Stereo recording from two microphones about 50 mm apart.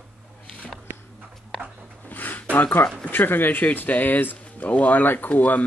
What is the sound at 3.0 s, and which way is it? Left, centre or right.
Speech, left.